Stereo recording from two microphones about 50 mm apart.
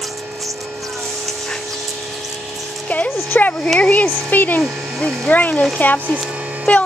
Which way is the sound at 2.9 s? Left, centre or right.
Left.